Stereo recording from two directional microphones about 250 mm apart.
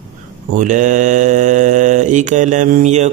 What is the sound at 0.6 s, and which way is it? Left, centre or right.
Mantra, right.